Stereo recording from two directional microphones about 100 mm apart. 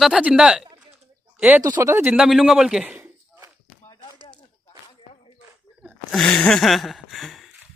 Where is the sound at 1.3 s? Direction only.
15° right (ahead or behind).